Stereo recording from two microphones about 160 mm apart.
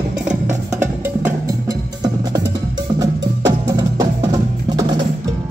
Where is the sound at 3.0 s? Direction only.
20° right (ahead or behind).